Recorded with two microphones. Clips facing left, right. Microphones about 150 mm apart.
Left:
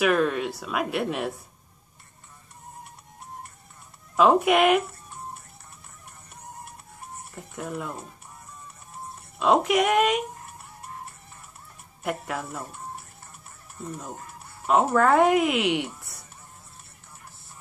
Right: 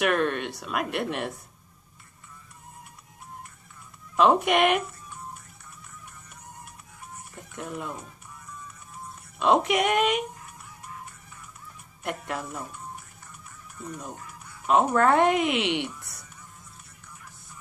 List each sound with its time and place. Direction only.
0.0 s speech: centre (ahead or behind)
4.2 s speech: centre (ahead or behind)
7.3 s speech: centre (ahead or behind)
9.4 s speech: centre (ahead or behind)
12.3 s speech: 5° left (ahead or behind)
14.1 s a sound: 40° left (ahead or behind)
14.7 s speech: centre (ahead or behind)